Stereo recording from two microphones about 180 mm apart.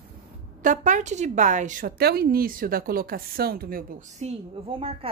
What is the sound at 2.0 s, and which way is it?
Speech, 60° right (ahead or behind).